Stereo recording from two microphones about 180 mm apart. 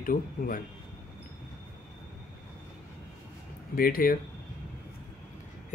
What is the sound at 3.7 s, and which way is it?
Speech, 55° left (ahead or behind).